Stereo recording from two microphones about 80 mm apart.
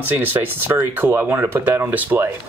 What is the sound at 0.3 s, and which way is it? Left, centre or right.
Speech, right.